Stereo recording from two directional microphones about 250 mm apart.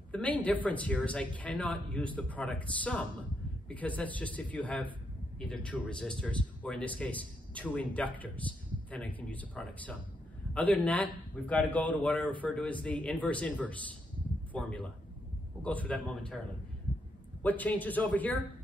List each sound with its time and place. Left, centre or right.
0.1 s a man's voice: centre
17.4 s speech: centre